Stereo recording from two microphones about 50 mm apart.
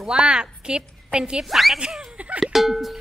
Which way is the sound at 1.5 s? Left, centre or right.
Centre.